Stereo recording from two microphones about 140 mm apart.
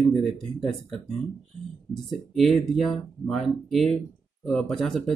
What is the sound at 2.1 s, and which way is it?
Speech, centre (ahead or behind).